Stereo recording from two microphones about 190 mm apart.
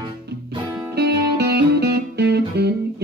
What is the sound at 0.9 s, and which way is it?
Music, 60° right (ahead or behind).